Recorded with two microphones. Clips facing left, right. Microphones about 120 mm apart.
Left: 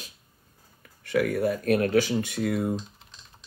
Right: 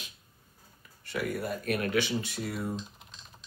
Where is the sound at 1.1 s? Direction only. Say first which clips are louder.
Left 8 dB; 55° left (ahead or behind).